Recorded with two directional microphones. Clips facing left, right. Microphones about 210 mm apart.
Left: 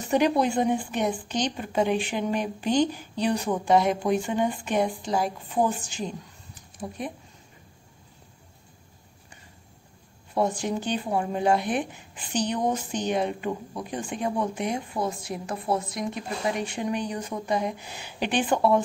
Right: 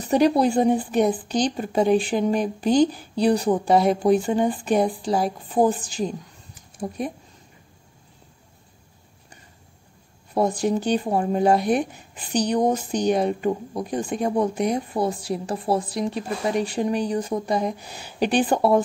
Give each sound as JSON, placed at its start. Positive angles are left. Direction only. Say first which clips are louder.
{"t": 0.1, "sound": "speech", "louder": "right 4 dB", "side_deg": -35}
{"t": 10.3, "sound": "speech", "louder": "right 4 dB", "side_deg": -40}